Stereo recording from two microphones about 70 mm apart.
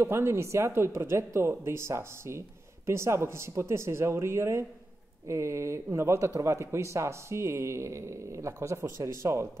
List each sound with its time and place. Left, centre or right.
0.0 s speech: right